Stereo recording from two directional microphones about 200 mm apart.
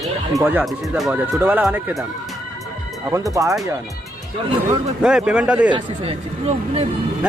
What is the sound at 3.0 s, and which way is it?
Speech, 15° right (ahead or behind).